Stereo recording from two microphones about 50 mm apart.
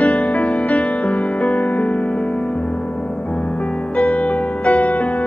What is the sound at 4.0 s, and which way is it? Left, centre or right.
Music, left.